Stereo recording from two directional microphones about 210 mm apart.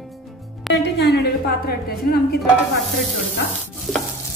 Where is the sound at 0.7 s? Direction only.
55° left (ahead or behind).